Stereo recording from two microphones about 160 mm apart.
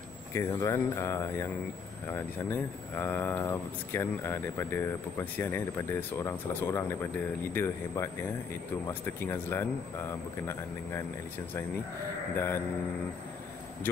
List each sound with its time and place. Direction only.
0.3 s speech: 20° left (ahead or behind)
12.4 s speech: 15° left (ahead or behind)